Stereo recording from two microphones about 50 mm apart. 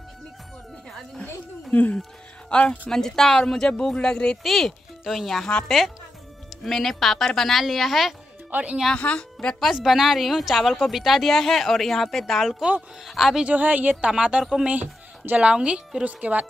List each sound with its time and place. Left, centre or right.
1.2 s a sound: left
2.5 s a woman's voice: left
2.9 s speech: centre
4.4 s speech: centre
6.6 s speech: centre
8.5 s speech: right
8.9 s a woman's voice: left
9.8 s speech: centre
13.4 s a woman's voice: right
14.0 s a woman's voice: centre
14.7 s a woman's voice: right